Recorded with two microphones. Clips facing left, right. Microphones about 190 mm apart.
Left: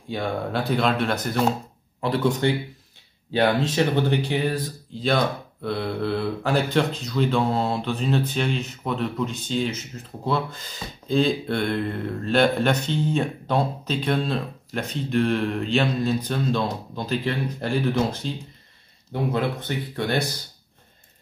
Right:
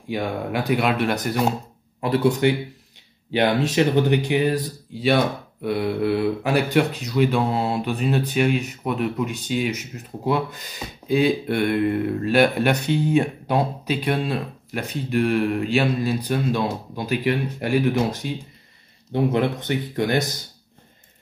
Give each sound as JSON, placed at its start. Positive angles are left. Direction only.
{"t": 0.1, "sound": "speech", "side_deg": -15}
{"t": 2.4, "sound": "speech", "side_deg": -15}